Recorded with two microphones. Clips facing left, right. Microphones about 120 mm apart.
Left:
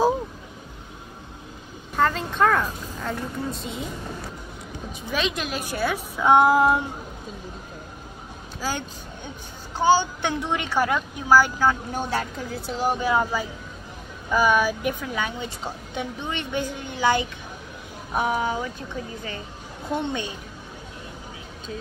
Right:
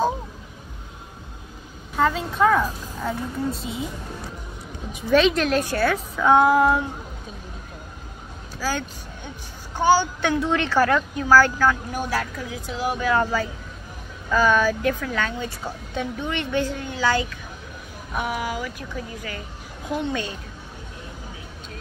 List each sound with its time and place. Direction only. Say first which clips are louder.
2.0 s a woman's voice: right 1 dB; 5° right (ahead or behind)
5.1 s speech: right 9 dB; 5° left (ahead or behind); by 6.8 s 20° left (ahead or behind)
8.5 s speech: right 2 dB; 20° left (ahead or behind)
12.4 s a woman's voice: left 1 dB; 35° left (ahead or behind)
12.9 s speech: right 2 dB; 20° left (ahead or behind)
13.2 s speech: right 2 dB; 10° left (ahead or behind)
18.1 s speech: left 3 dB; 35° left (ahead or behind)